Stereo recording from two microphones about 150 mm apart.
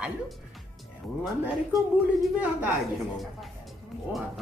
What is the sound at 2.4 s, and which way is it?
Speech, 10° right (ahead or behind).